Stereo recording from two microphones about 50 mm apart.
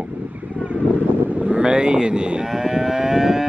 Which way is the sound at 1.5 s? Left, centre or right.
Centre.